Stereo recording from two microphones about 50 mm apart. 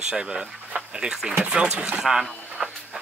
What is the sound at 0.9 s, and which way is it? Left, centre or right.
Speech, centre.